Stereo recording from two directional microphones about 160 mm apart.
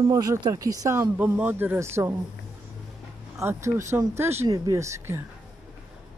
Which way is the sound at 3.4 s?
15° right (ahead or behind).